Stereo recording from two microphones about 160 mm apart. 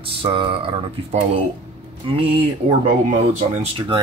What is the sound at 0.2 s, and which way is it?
Speech, 35° right (ahead or behind).